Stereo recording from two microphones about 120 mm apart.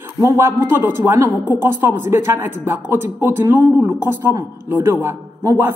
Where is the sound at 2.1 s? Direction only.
20° right (ahead or behind).